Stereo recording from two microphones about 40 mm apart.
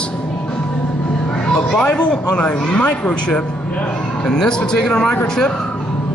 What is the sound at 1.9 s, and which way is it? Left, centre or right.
A man's voice, left.